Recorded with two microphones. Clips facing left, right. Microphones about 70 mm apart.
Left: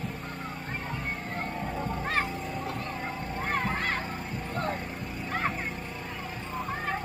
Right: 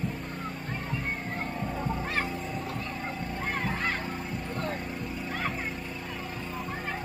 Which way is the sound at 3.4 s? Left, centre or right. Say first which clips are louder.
Left 2 dB; left.